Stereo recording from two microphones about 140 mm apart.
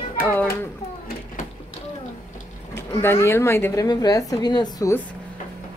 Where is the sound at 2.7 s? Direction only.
15° left (ahead or behind).